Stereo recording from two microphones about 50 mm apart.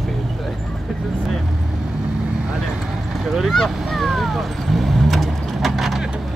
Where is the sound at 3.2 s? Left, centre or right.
Centre.